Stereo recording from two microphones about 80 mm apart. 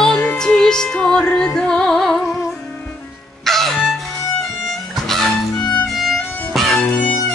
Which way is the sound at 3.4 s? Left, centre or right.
Centre.